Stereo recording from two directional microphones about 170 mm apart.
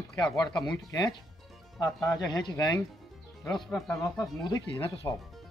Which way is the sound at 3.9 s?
20° left (ahead or behind).